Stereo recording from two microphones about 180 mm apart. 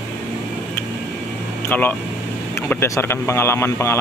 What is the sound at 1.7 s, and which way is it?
A man's voice, 10° left (ahead or behind).